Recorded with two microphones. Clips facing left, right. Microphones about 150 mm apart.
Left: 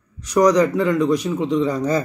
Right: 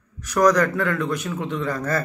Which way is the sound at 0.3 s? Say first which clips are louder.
Left 3 dB; 15° left (ahead or behind).